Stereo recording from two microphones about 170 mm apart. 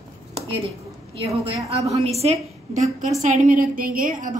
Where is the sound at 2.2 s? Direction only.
40° right (ahead or behind).